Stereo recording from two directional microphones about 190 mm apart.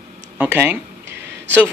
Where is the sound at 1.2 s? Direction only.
65° right (ahead or behind).